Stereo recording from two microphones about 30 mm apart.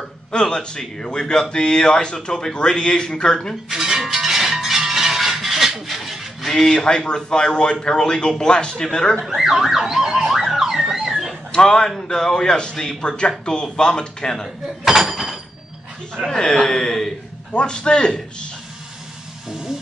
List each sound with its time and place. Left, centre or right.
0.3 s speech: left
3.7 s music: centre
4.0 s music: centre
5.9 s a sound: centre
6.5 s speech: centre
9.2 s car alarm: centre
9.5 s car alarm: centre
11.5 s a man's voice: left
14.9 s a sound: centre
16.3 s speech: centre
17.5 s a man's voice: left